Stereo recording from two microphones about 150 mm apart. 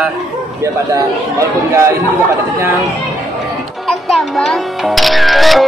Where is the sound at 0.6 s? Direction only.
20° right (ahead or behind).